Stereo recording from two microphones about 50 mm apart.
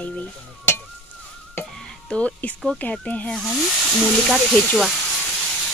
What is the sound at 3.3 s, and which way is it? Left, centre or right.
Speech, centre.